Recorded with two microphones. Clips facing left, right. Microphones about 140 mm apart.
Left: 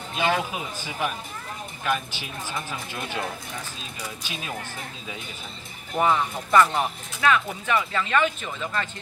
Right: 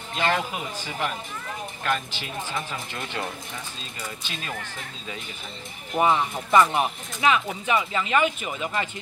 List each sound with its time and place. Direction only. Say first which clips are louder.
0.2 s speech: even; 10° left (ahead or behind)
5.9 s speech: right 1 dB; 15° right (ahead or behind)